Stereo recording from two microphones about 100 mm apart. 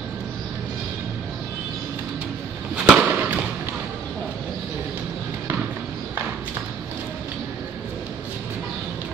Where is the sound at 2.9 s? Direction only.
15° right (ahead or behind).